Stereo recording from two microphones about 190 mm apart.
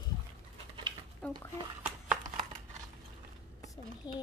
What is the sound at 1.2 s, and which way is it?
Speech, 5° left (ahead or behind).